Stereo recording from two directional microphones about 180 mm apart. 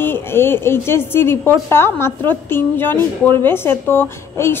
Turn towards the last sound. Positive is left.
turn(degrees=15)  # may be behind; listen again after turning